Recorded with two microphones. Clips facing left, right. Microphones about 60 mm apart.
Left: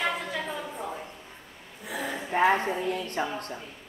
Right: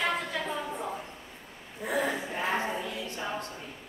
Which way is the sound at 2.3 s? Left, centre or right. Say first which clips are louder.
Left 12 dB; left.